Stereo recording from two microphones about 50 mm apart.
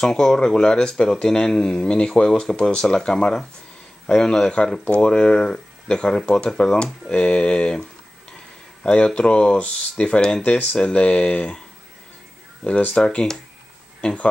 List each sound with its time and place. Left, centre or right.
0.0 s speech: centre
8.8 s speech: centre
10.4 s speech: left
12.9 s speech: centre